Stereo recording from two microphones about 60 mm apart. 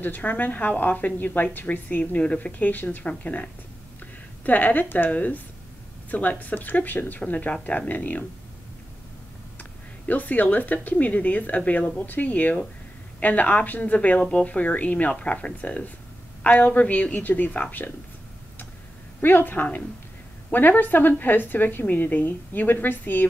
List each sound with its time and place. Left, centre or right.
0.0 s a woman's voice: left
4.5 s a woman's voice: left
9.6 s a woman's voice: left
19.2 s a woman's voice: left